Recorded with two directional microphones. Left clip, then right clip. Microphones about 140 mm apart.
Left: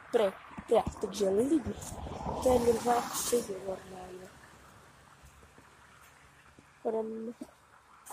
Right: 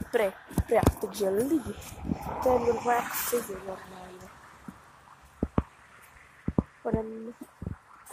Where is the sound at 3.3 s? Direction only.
35° left (ahead or behind); by 4.8 s 55° left (ahead or behind).